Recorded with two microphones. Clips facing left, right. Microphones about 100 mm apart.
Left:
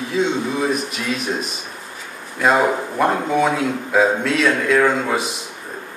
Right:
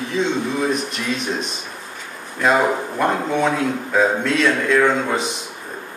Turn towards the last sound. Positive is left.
turn(degrees=5)  # may be behind; listen again after turning